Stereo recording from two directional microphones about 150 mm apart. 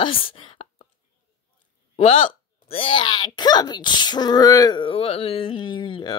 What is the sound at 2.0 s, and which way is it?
Speech, 40° left (ahead or behind).